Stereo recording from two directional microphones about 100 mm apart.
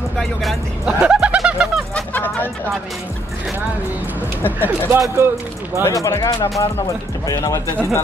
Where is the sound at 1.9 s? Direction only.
15° left (ahead or behind).